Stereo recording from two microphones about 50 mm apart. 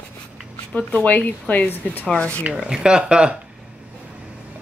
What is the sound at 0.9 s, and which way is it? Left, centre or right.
Speech, left.